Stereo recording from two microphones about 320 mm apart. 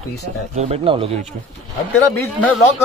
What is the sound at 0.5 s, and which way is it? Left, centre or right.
Speech, centre.